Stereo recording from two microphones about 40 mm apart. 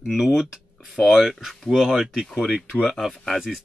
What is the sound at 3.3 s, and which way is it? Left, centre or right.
Speech, centre.